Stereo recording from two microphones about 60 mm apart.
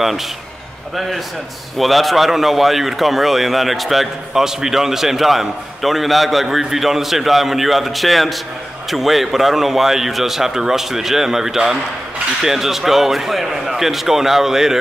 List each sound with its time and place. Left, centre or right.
0.9 s a man's voice: centre